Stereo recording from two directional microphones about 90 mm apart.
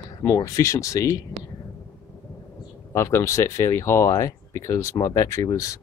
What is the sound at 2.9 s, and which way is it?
Speech, 30° left (ahead or behind).